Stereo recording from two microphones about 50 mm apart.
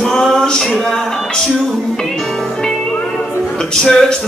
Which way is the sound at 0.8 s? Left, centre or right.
Centre.